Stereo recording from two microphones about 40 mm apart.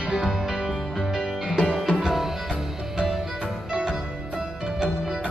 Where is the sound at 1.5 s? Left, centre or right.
Centre.